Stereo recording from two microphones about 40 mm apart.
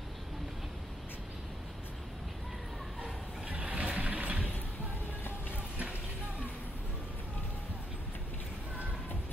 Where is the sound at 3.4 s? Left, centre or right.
Right.